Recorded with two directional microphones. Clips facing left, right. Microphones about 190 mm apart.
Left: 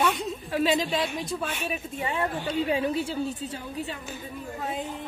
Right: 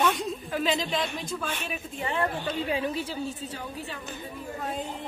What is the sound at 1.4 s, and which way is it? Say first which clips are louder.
A woman's voice: left 2 dB; 15° left (ahead or behind).